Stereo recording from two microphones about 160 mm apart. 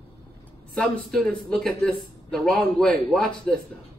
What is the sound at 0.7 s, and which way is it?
Speech, 5° left (ahead or behind).